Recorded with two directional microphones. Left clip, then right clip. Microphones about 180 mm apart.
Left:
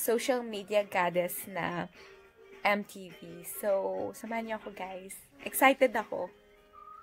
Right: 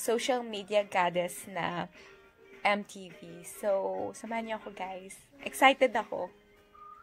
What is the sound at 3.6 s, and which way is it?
A woman's voice, 20° left (ahead or behind).